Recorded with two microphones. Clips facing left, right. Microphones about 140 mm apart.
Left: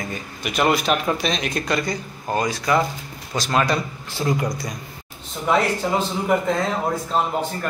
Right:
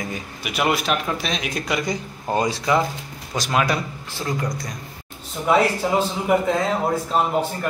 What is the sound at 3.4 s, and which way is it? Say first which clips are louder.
Speech: left 1 dB; 10° right (ahead or behind).